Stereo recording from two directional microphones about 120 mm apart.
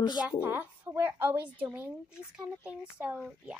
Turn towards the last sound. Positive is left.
turn(degrees=-10)  # may be behind; listen again after turning